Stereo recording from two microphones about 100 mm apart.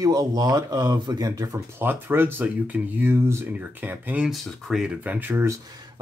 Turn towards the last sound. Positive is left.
turn(degrees=-25)  # may be behind; listen again after turning